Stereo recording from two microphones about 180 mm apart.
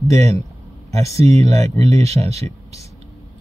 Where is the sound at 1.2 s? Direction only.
35° right (ahead or behind).